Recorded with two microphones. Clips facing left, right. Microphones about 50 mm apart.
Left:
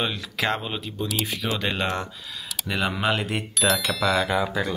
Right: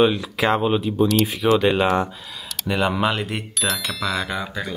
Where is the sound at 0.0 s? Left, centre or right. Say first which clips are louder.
Right 8 dB; centre.